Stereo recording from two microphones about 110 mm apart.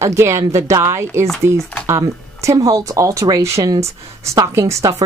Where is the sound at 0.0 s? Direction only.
25° right (ahead or behind).